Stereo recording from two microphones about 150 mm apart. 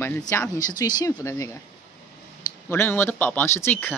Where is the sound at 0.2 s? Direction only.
20° left (ahead or behind).